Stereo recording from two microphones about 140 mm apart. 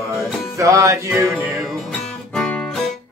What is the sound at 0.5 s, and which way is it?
Music, 20° right (ahead or behind).